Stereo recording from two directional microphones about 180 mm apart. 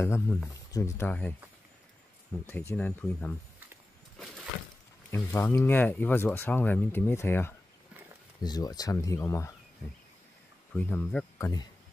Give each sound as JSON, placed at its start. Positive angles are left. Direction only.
{"t": 0.0, "sound": "speech", "side_deg": 15}
{"t": 2.4, "sound": "speech", "side_deg": 10}
{"t": 5.1, "sound": "speech", "side_deg": 15}
{"t": 10.7, "sound": "speech", "side_deg": 10}